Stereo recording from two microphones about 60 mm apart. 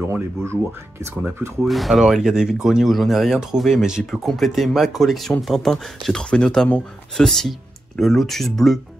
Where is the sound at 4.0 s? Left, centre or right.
Centre.